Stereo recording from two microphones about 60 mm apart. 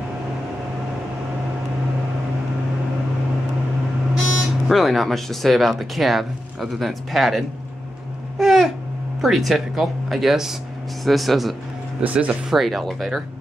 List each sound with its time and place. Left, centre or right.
4.4 s speech: centre
8.4 s babbling: centre
9.2 s speech: centre
12.0 s speech: right
12.4 s speech: centre